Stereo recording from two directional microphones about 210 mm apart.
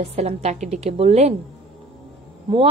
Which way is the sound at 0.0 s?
30° right (ahead or behind).